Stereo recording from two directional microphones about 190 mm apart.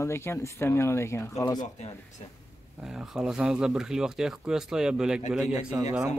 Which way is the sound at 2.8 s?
5° right (ahead or behind).